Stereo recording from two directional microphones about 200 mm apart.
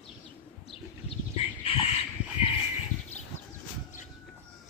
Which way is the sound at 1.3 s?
30° left (ahead or behind).